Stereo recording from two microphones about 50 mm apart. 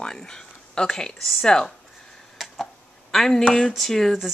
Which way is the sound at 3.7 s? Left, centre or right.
Centre.